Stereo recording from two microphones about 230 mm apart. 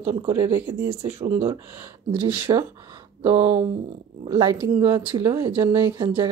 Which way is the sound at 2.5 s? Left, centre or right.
Centre.